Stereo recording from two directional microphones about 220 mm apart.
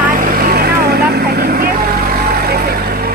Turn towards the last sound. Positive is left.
turn(degrees=-45)  # may be behind; listen again after turning